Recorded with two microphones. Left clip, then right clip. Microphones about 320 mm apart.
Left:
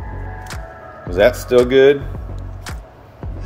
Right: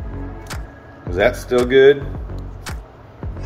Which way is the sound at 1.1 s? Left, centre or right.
Left.